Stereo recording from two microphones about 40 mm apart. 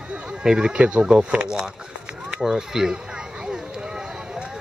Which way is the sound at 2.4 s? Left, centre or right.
Centre.